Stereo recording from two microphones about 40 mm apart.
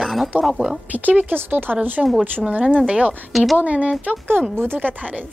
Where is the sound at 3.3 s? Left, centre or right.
Centre.